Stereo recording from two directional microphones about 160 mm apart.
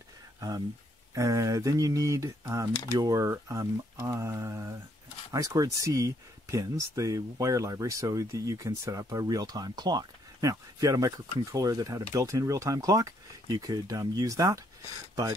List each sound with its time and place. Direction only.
0.4 s speech: 25° right (ahead or behind)